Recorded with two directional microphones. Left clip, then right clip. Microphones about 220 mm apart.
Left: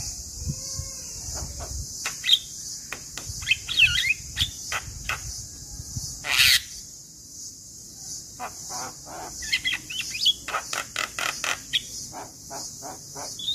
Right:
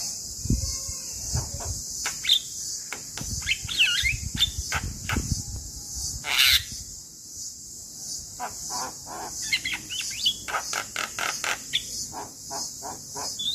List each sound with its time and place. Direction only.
2.0 s bird: 15° left (ahead or behind)
2.9 s cricket: 15° left (ahead or behind)
6.2 s a sound: 20° left (ahead or behind)
8.4 s cricket: 20° left (ahead or behind)
8.8 s cricket: centre (ahead or behind)
9.5 s chirp: 15° left (ahead or behind)
12.4 s a sound: 15° left (ahead or behind)